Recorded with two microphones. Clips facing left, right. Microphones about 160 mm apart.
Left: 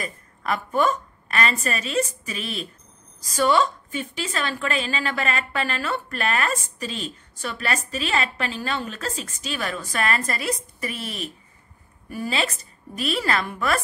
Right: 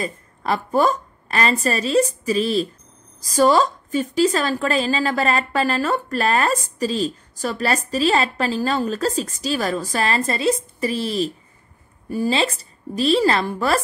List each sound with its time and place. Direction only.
0.0 s a woman's voice: 30° right (ahead or behind)